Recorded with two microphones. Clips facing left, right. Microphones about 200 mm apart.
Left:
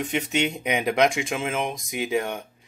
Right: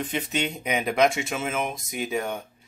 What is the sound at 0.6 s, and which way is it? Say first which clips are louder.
Speech: right 1 dB; 15° left (ahead or behind).